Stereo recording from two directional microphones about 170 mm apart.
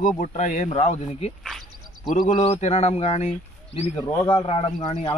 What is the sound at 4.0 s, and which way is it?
A man's voice, 20° left (ahead or behind).